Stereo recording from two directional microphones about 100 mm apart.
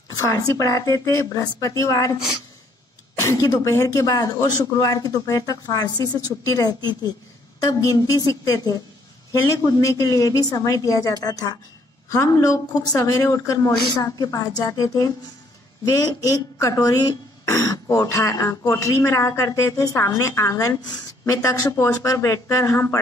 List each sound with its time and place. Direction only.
0.1 s speech: 35° left (ahead or behind)
3.2 s speech: 35° left (ahead or behind)